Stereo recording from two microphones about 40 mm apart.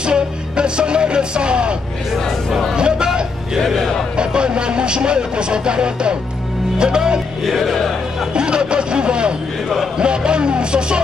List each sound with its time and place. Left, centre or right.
0.0 s music: right
2.7 s hubbub: right
3.6 s speech: centre
4.2 s speech: right
7.4 s music: centre
8.4 s snicker: right
9.9 s vehicle: right